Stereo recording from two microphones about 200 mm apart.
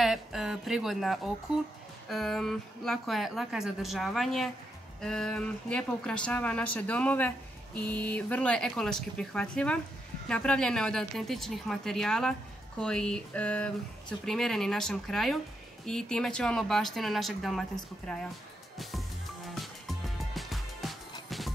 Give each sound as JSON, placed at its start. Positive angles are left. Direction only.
{"t": 0.0, "sound": "a woman's voice", "side_deg": 0}
{"t": 18.8, "sound": "music", "side_deg": 0}